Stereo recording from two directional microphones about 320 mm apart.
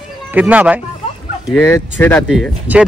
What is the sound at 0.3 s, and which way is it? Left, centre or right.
Speech, centre.